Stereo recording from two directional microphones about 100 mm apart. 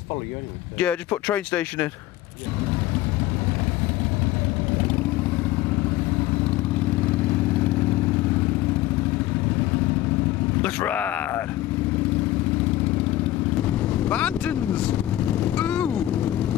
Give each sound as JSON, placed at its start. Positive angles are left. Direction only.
{"t": 0.7, "sound": "speech", "side_deg": 15}
{"t": 10.6, "sound": "a sound", "side_deg": 15}
{"t": 13.8, "sound": "speech", "side_deg": 10}
{"t": 15.4, "sound": "vehicle", "side_deg": 10}